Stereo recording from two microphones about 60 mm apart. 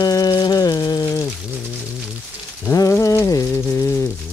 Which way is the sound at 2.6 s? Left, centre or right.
Left.